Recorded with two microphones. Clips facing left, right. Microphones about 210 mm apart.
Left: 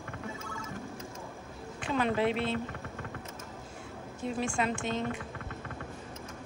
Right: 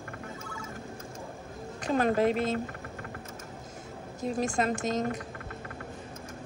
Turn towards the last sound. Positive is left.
turn(degrees=-40)  # may be behind; listen again after turning